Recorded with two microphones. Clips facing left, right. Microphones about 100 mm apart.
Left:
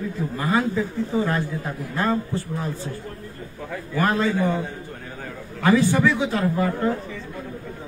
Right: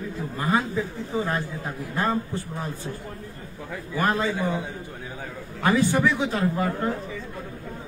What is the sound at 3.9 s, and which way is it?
Speech, 20° right (ahead or behind).